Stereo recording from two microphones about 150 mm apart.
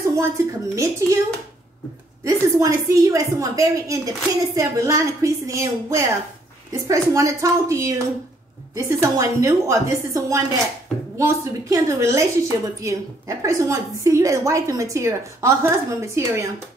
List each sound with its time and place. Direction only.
0.1 s a woman's voice: 20° right (ahead or behind)
2.2 s a woman's voice: 20° right (ahead or behind)